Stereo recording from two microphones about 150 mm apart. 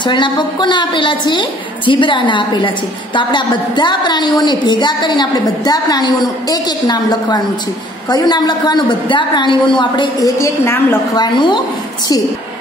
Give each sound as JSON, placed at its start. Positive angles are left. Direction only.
{"t": 0.0, "sound": "a woman's voice", "side_deg": 30}
{"t": 10.4, "sound": "a woman's voice", "side_deg": 15}
{"t": 11.1, "sound": "a woman's voice", "side_deg": 30}